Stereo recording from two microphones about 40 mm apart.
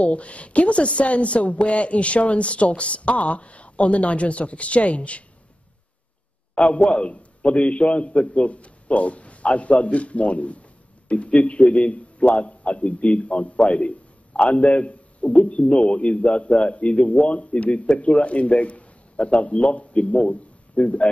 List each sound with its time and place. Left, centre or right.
0.0 s a woman's voice: left
6.5 s a woman's voice: left